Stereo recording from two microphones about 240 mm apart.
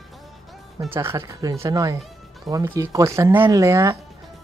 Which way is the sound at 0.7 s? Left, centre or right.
Centre.